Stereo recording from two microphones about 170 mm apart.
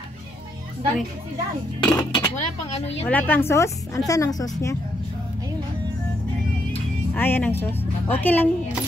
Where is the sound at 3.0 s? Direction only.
10° left (ahead or behind).